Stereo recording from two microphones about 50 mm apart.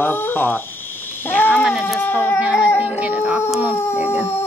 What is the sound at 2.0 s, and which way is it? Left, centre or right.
Speech, left.